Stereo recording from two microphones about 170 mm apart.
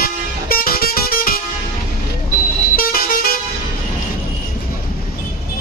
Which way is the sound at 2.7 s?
60° left (ahead or behind).